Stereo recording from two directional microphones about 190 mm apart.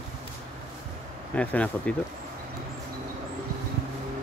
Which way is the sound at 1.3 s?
5° left (ahead or behind).